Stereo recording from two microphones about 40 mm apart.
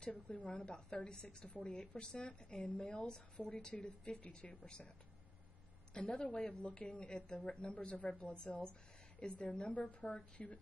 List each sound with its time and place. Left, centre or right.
0.1 s a woman's voice: left
5.9 s a woman's voice: left